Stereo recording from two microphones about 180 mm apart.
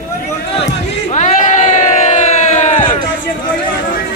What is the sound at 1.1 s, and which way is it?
Crowd, 45° left (ahead or behind).